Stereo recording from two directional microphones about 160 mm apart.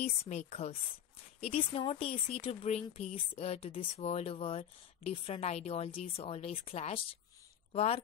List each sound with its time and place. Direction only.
0.0 s speech: 40° left (ahead or behind)